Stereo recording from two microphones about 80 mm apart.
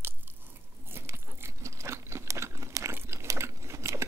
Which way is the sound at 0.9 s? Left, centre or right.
Right.